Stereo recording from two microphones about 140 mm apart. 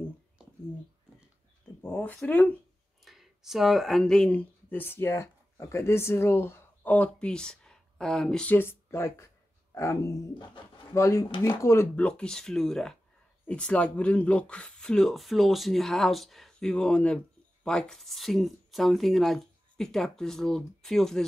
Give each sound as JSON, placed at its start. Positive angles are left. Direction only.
{"t": 1.8, "sound": "speech", "side_deg": 10}
{"t": 3.0, "sound": "speech", "side_deg": 0}